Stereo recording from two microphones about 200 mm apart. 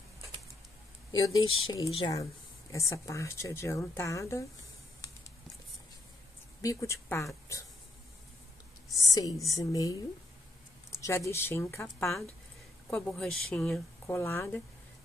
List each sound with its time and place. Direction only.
1.1 s speech: 90° left
1.7 s a woman's voice: 25° left (ahead or behind)
6.6 s a woman's voice: 15° left (ahead or behind)
8.9 s a woman's voice: 20° left (ahead or behind)